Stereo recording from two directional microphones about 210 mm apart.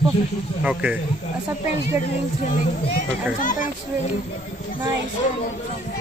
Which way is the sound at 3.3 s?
40° left (ahead or behind).